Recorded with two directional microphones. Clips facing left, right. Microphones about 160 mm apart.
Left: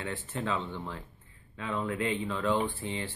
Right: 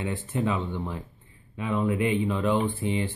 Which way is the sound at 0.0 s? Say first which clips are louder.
Right 7 dB; 15° right (ahead or behind).